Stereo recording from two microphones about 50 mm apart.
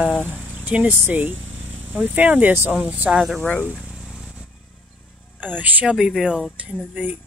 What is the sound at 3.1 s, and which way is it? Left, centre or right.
Speech, centre.